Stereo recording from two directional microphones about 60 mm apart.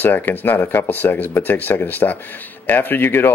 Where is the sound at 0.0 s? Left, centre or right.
Left.